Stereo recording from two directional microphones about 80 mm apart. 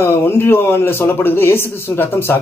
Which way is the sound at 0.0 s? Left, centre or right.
Left.